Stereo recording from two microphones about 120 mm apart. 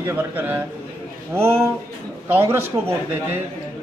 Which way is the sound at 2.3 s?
20° right (ahead or behind).